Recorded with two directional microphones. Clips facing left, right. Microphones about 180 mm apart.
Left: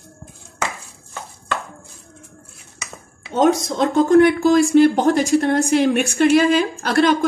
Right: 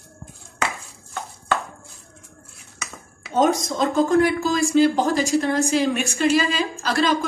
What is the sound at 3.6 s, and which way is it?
Speech, 65° left (ahead or behind).